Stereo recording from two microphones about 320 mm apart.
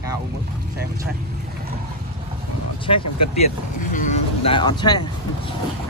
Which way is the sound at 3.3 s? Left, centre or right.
Left.